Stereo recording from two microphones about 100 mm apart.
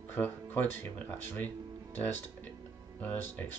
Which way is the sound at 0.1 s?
20° left (ahead or behind).